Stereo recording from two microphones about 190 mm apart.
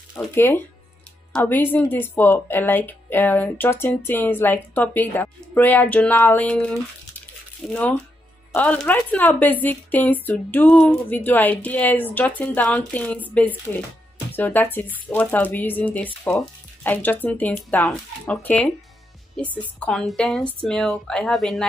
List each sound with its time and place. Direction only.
0.3 s a woman's voice: 10° left (ahead or behind)